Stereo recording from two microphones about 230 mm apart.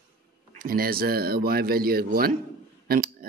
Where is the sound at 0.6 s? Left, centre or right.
Right.